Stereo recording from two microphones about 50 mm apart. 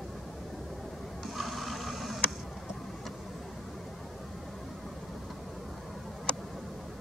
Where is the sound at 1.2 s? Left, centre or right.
Centre.